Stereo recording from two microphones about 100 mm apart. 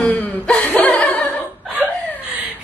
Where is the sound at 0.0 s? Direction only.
15° left (ahead or behind).